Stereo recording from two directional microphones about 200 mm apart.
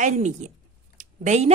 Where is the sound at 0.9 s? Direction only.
35° right (ahead or behind).